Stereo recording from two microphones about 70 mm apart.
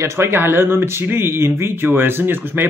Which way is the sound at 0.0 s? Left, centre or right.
Right.